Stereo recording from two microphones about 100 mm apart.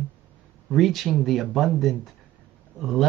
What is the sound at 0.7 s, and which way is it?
Speech, centre (ahead or behind).